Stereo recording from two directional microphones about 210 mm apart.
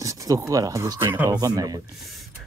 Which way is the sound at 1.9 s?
Centre (ahead or behind).